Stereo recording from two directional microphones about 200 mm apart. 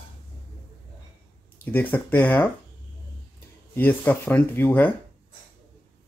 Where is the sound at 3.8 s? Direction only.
10° left (ahead or behind).